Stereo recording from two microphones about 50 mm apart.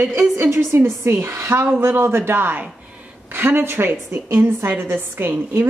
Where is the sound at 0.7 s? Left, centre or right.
Right.